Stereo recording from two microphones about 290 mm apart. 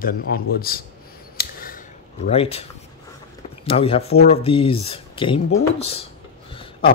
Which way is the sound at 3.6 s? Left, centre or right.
Centre.